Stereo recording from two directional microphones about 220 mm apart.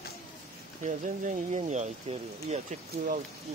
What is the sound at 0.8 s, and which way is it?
Speech, 35° right (ahead or behind).